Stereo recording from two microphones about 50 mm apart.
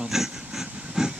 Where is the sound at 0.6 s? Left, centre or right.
Centre.